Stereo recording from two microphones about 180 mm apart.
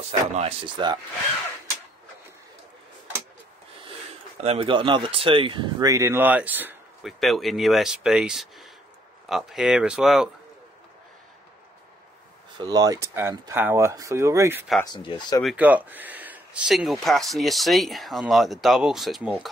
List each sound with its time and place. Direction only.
0.1 s speech: 35° right (ahead or behind)
0.8 s speech: 25° right (ahead or behind)
3.8 s speech: 35° right (ahead or behind); by 10.3 s 5° right (ahead or behind)
12.5 s speech: 20° right (ahead or behind)
14.8 s speech: 25° left (ahead or behind)
15.4 s speech: 10° right (ahead or behind)